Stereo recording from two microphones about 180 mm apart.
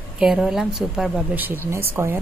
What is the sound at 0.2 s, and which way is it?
A woman's voice, 5° right (ahead or behind).